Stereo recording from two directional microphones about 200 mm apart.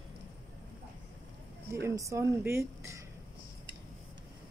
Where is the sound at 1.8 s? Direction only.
15° right (ahead or behind).